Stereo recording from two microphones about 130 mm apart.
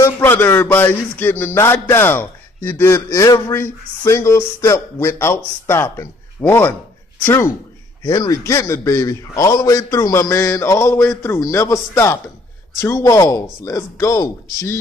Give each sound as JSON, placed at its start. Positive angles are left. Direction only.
{"t": 0.0, "sound": "speech", "side_deg": 15}